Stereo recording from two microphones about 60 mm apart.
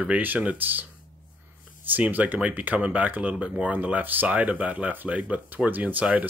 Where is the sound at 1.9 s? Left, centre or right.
Right.